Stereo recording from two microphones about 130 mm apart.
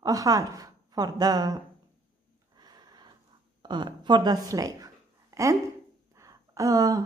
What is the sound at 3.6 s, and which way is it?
Speech, 35° right (ahead or behind).